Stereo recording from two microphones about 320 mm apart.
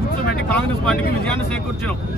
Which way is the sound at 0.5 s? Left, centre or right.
Centre.